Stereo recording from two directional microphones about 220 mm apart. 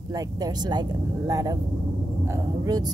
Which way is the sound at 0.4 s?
20° right (ahead or behind).